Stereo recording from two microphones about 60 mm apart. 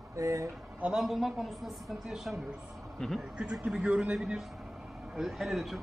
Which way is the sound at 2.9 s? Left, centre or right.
Centre.